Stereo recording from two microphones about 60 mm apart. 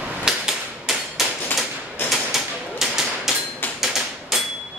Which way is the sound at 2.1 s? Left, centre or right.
Centre.